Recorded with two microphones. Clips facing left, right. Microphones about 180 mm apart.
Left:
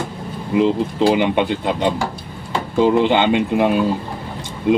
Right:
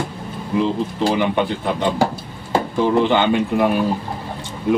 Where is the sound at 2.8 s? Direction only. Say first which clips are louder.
Left 3 dB; 20° left (ahead or behind).